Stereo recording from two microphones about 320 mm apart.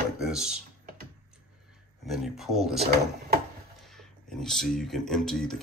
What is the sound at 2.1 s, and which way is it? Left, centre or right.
Speech, centre.